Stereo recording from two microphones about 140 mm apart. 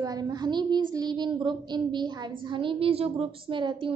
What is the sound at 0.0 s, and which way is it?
A woman's voice, 25° right (ahead or behind).